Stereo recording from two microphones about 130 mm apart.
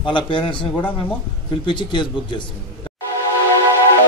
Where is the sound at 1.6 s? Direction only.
35° left (ahead or behind).